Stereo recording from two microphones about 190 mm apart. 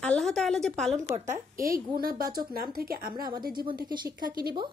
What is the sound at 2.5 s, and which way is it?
Speech, 50° right (ahead or behind).